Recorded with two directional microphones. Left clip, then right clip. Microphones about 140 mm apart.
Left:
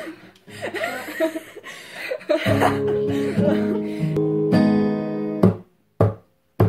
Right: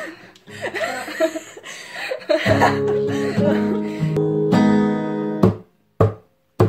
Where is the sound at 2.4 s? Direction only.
20° right (ahead or behind).